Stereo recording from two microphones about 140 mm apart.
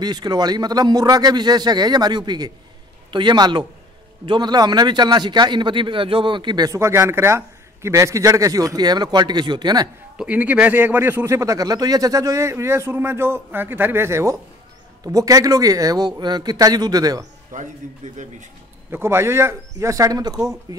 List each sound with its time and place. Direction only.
0.0 s a man's voice: 30° right (ahead or behind)
10.1 s speech: 10° right (ahead or behind); by 17.2 s 25° right (ahead or behind)
17.5 s a man's voice: 60° right (ahead or behind)
18.9 s speech: 15° right (ahead or behind)